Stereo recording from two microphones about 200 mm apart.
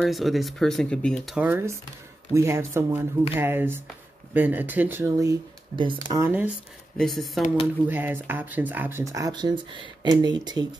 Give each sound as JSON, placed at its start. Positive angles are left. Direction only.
{"t": 0.0, "sound": "speech", "side_deg": 0}
{"t": 7.0, "sound": "speech", "side_deg": 0}
{"t": 7.9, "sound": "speech", "side_deg": -10}